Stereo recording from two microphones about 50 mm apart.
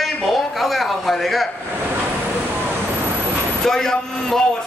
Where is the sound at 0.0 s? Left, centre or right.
Centre.